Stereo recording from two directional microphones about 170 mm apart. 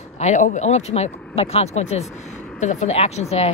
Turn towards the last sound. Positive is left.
turn(degrees=40)  # may be behind; listen again after turning